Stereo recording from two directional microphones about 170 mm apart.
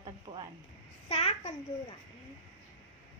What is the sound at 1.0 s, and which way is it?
Speech, 35° left (ahead or behind).